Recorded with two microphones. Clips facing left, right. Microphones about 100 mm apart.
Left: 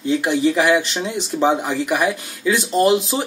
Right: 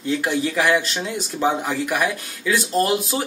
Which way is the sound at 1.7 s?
15° left (ahead or behind).